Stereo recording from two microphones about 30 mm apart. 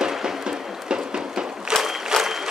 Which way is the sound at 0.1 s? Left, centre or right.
Right.